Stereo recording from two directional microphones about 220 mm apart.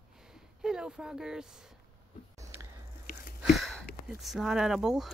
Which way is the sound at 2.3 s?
15° right (ahead or behind).